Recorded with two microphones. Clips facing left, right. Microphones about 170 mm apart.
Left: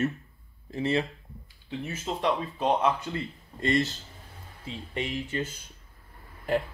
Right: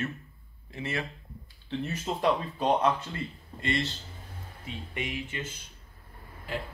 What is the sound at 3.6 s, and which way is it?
Speech, 45° left (ahead or behind).